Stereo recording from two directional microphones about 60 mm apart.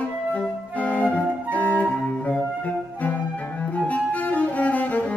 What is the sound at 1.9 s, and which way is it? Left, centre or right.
Music, left.